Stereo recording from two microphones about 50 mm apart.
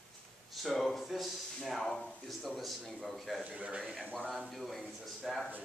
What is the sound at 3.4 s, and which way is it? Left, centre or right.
Speech, right.